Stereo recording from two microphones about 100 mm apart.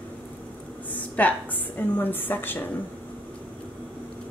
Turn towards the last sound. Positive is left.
turn(degrees=20)  # may be behind; listen again after turning